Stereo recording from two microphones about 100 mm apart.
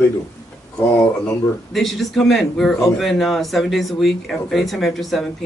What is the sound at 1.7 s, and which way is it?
Speech, centre (ahead or behind).